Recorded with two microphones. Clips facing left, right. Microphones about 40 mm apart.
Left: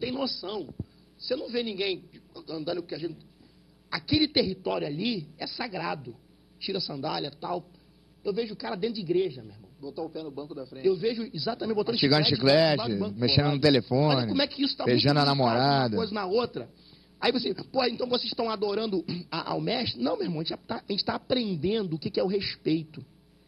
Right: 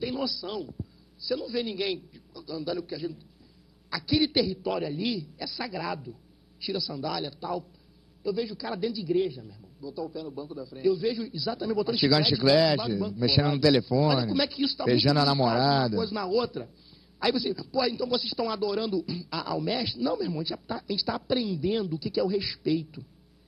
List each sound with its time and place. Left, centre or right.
0.0 s a man's voice: left